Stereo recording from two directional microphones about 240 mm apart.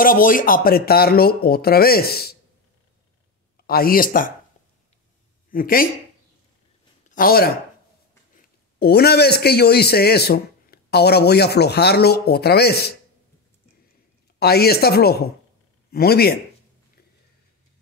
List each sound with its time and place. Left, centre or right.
0.0 s speech: left
3.6 s speech: left
5.5 s speech: left
7.1 s a man's voice: left
14.4 s speech: left